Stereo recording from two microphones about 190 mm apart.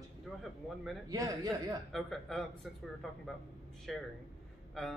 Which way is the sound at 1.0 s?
20° right (ahead or behind).